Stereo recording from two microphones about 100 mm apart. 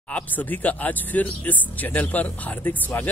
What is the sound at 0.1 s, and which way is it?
A man's voice, 15° left (ahead or behind).